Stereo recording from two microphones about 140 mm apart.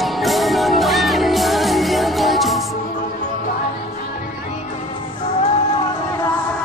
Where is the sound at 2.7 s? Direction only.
65° left (ahead or behind).